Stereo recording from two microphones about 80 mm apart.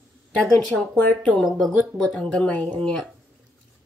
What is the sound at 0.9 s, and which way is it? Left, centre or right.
Speech, centre.